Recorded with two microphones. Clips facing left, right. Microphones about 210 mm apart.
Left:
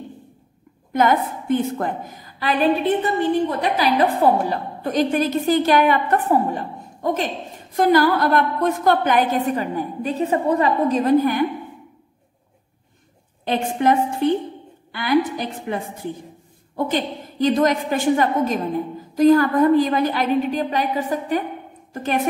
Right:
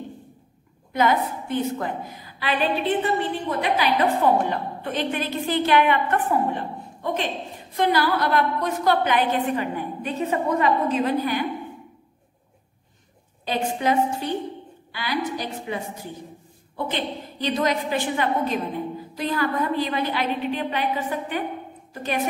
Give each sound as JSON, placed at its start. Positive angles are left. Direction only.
{"t": 0.9, "sound": "a woman's voice", "side_deg": 50}
{"t": 13.5, "sound": "a woman's voice", "side_deg": 55}
{"t": 21.9, "sound": "a sound", "side_deg": 50}